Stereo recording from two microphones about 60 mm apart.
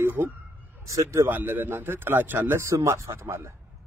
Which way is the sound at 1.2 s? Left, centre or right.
Right.